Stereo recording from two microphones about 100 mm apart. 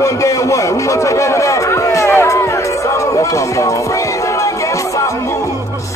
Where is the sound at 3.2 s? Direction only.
30° left (ahead or behind).